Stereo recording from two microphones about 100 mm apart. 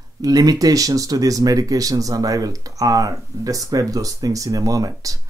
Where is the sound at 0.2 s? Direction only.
40° right (ahead or behind).